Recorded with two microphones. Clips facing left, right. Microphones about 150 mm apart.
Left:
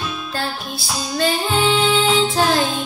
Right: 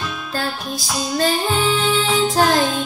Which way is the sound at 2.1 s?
40° right (ahead or behind).